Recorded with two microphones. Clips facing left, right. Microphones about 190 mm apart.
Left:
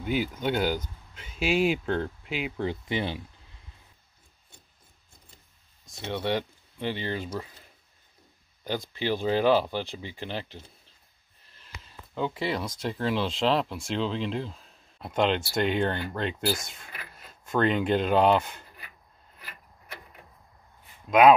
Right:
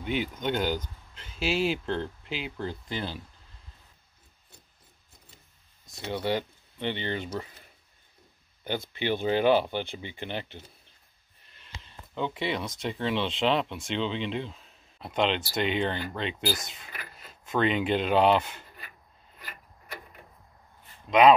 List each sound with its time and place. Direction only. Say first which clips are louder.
0.0 s speech: left 2 dB; 5° left (ahead or behind)
2.6 s speech: left 6 dB; 20° left (ahead or behind)
6.1 s speech: even; centre (ahead or behind)
9.1 s speech: even; centre (ahead or behind)
11.8 s speech: left 1 dB; 5° left (ahead or behind)